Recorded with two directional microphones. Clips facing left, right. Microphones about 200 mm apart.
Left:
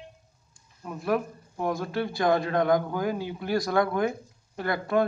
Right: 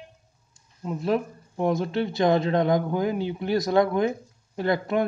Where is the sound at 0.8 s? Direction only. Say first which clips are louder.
Right 2 dB; 25° right (ahead or behind).